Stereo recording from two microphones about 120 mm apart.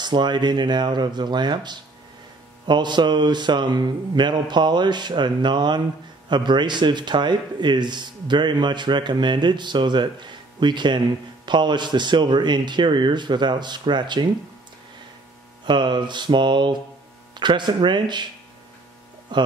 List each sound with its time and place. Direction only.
0.0 s speech: 40° right (ahead or behind)
15.6 s speech: 40° right (ahead or behind)
19.3 s speech: 40° right (ahead or behind)